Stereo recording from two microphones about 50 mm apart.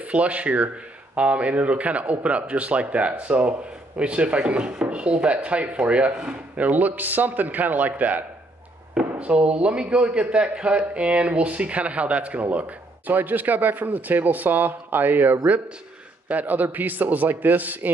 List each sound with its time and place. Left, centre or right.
0.0 s a man's voice: right